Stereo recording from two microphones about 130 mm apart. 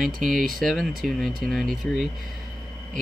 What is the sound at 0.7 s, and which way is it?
Speech, centre (ahead or behind).